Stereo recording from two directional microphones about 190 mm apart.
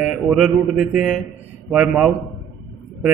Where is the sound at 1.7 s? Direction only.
Centre (ahead or behind).